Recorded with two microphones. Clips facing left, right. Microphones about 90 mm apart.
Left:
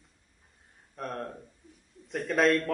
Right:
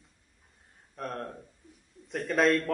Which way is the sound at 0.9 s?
Centre (ahead or behind).